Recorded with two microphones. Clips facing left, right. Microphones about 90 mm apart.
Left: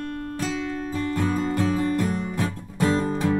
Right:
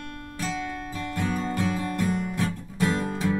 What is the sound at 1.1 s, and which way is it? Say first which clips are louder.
Music: left 2 dB; 30° left (ahead or behind).